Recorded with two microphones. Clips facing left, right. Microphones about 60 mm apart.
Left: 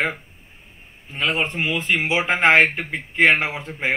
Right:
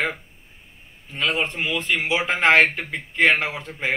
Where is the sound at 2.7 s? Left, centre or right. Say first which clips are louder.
Left 2 dB; centre.